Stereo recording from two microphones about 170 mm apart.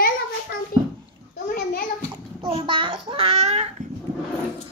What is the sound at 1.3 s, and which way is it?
Bathtub, 50° left (ahead or behind).